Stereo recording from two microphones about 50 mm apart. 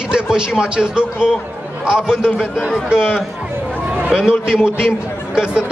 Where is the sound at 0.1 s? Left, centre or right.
Centre.